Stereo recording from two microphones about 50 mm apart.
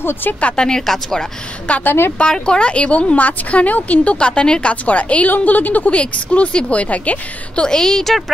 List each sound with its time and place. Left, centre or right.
0.0 s speech: left
0.4 s speech: left
0.7 s a woman's voice: centre
1.9 s speech: left
2.1 s speech: centre
7.6 s a woman's voice: centre